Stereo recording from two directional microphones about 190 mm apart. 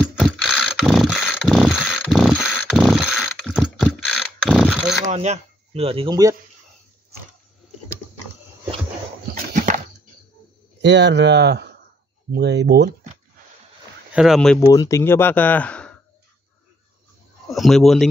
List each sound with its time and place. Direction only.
0.0 s mechanisms: centre (ahead or behind)
2.4 s a sound: centre (ahead or behind)
5.0 s speech: 35° right (ahead or behind); by 6.3 s 20° right (ahead or behind)
10.8 s speech: 65° right (ahead or behind)
14.1 s speech: centre (ahead or behind)
14.7 s speech: 15° left (ahead or behind)
17.5 s speech: centre (ahead or behind)